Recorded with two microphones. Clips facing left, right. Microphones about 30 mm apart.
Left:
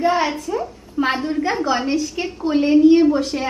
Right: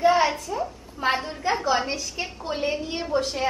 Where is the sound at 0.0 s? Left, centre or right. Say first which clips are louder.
Left 1 dB; centre.